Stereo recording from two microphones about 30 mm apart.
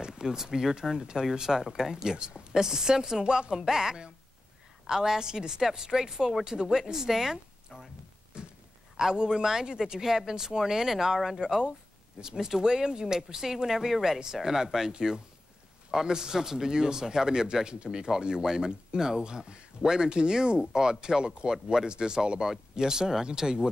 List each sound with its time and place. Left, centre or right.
0.0 s speech: right
8.3 s a sound: right
8.9 s speech: right